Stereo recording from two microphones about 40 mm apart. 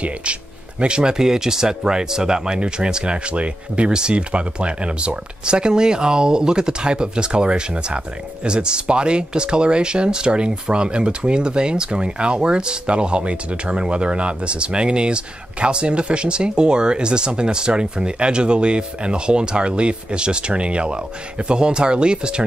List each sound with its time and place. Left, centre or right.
0.0 s speech: right